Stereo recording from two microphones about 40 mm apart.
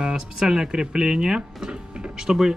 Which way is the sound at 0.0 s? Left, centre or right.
Centre.